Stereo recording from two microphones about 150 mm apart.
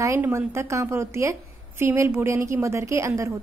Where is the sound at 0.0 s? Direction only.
20° right (ahead or behind).